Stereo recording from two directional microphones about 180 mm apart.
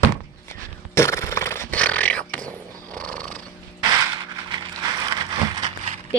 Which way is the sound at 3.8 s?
20° right (ahead or behind).